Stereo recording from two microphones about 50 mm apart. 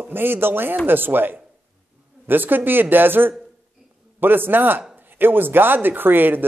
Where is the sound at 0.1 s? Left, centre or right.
Right.